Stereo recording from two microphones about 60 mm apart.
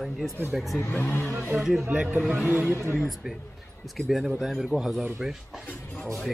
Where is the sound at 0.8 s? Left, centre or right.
Left.